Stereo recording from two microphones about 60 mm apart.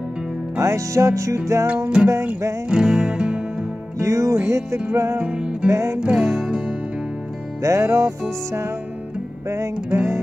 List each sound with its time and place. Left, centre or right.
0.6 s music: right
2.7 s music: centre
4.0 s music: right
5.2 s music: centre
5.7 s music: right
5.9 s music: centre
7.6 s music: right
9.9 s music: right